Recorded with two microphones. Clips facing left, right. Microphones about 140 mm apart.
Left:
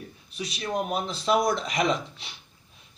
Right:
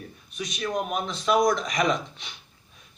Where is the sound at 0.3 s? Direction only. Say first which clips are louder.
Right 1 dB; 30° left (ahead or behind).